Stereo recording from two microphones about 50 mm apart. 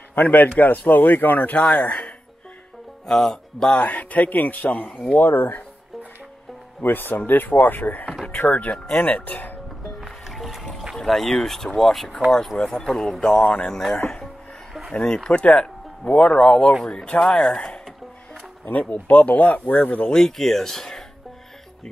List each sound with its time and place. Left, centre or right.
0.1 s a man's voice: left
3.1 s speech: centre
3.7 s a man's voice: left
6.8 s a man's voice: left
8.4 s speech: left
9.9 s music: centre
11.0 s speech: centre
13.2 s speech: left
13.7 s speech: centre
13.9 s speech: left
17.3 s speech: centre
18.7 s a man's voice: left
20.1 s speech: centre